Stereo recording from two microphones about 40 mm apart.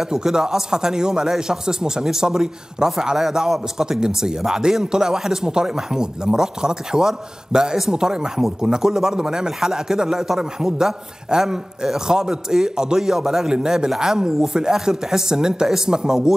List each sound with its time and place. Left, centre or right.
0.1 s speech: centre